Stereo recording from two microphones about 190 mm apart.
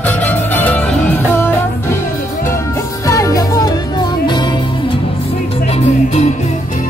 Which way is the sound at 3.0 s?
15° left (ahead or behind).